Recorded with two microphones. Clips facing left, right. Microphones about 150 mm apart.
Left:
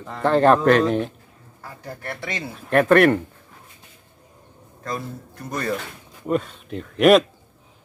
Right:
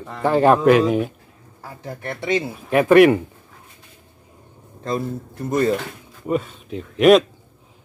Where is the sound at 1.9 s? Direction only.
20° right (ahead or behind).